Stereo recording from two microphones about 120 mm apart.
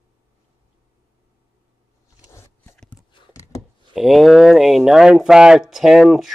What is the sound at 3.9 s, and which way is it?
Speech, centre (ahead or behind).